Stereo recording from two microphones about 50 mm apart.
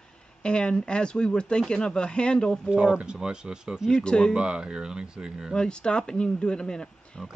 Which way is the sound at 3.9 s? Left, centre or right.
Centre.